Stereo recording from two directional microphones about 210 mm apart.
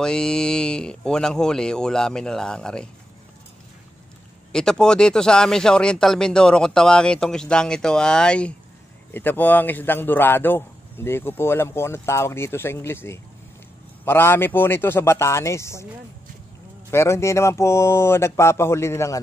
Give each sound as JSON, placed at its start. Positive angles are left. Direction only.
{"t": 0.0, "sound": "speech", "side_deg": 5}
{"t": 4.5, "sound": "a man's voice", "side_deg": 5}
{"t": 16.9, "sound": "a man's voice", "side_deg": 15}